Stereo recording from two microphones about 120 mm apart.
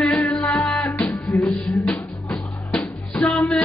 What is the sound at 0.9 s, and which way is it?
Music, 25° left (ahead or behind).